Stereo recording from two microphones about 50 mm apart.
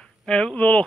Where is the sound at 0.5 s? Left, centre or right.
Left.